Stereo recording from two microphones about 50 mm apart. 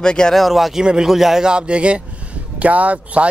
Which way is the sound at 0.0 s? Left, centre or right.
Centre.